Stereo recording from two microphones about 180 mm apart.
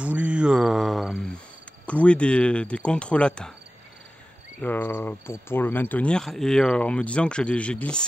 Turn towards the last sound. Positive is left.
turn(degrees=5)  # may be behind; listen again after turning